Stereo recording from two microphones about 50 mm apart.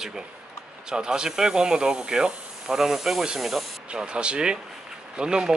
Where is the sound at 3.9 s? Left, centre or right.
Centre.